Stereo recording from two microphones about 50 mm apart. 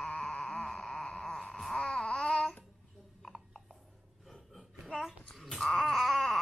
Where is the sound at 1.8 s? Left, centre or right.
Centre.